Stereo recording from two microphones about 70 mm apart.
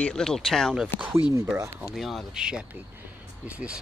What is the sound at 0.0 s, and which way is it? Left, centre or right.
Speech, centre.